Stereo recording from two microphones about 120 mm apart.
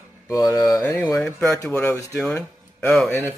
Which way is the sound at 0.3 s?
30° left (ahead or behind).